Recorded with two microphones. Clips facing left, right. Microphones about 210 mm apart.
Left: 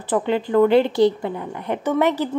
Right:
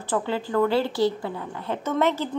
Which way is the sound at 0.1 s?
20° left (ahead or behind).